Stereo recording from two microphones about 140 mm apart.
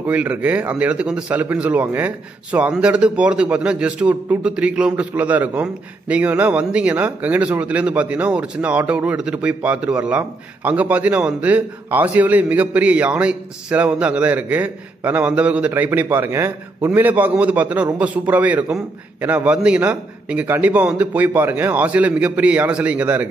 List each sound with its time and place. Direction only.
0.0 s speech: 10° right (ahead or behind)